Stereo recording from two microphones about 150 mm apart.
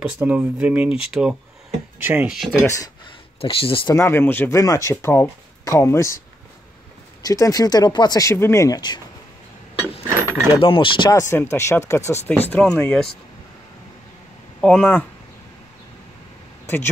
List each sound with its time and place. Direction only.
0.0 s speech: 10° right (ahead or behind)
2.6 s speech: 20° left (ahead or behind)
3.3 s speech: 40° left (ahead or behind)
3.9 s speech: 15° left (ahead or behind)
7.2 s speech: 25° left (ahead or behind)
10.0 s mechanisms: 20° right (ahead or behind)
10.5 s speech: 35° left (ahead or behind); by 13.0 s 10° left (ahead or behind)
14.6 s speech: 5° left (ahead or behind)
16.6 s speech: 15° left (ahead or behind)